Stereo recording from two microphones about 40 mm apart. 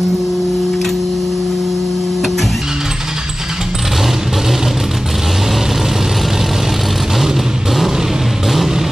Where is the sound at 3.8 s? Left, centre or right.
Centre.